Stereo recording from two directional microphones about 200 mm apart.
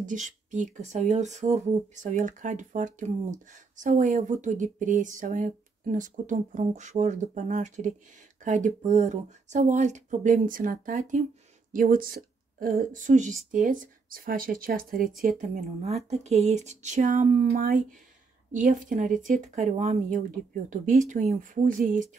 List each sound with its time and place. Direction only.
0.0 s speech: 40° right (ahead or behind)